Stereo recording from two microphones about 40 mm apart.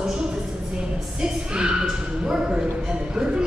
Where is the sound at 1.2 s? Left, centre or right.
Right.